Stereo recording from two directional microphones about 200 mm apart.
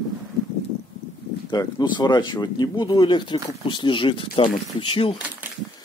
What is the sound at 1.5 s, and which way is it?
Speech, 20° left (ahead or behind).